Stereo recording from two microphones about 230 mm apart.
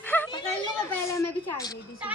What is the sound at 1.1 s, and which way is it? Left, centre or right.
Speech, centre.